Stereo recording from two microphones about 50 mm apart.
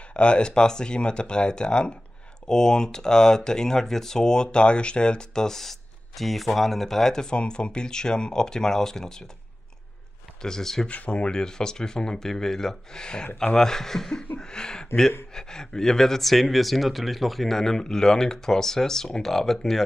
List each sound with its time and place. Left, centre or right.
0.1 s speech: left
10.4 s speech: centre
10.9 s speech: left; by 19.8 s centre